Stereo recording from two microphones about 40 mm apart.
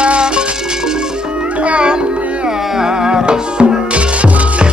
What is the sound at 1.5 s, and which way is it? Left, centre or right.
Music, right.